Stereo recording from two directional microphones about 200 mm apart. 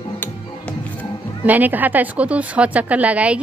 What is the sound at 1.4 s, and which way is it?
A woman's voice, 10° right (ahead or behind).